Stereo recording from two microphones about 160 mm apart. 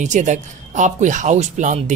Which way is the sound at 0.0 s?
50° right (ahead or behind).